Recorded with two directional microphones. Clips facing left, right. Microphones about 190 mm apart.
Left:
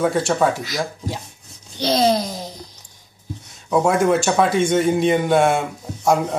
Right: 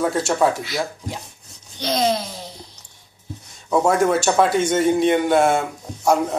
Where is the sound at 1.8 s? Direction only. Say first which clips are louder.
Left 3 dB; 30° left (ahead or behind).